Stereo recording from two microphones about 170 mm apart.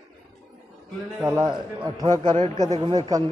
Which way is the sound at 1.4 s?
25° right (ahead or behind).